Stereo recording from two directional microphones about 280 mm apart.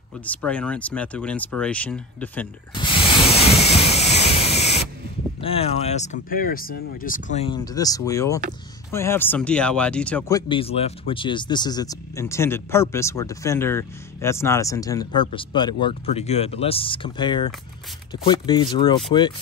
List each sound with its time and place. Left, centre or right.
0.2 s speech: centre
2.7 s speech: centre
3.3 s vehicle: left
3.5 s a sound: centre
5.4 s speech: centre
7.5 s speech: centre